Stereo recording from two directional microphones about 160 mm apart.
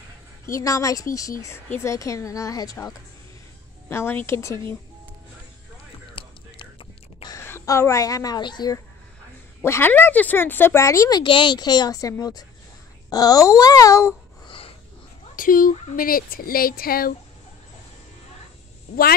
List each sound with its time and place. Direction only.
0.5 s a woman's voice: 20° left (ahead or behind)
6.1 s whispering: 35° left (ahead or behind)
7.3 s a woman's voice: 15° left (ahead or behind)
9.6 s speech: 15° left (ahead or behind)
15.3 s speech: 60° left (ahead or behind)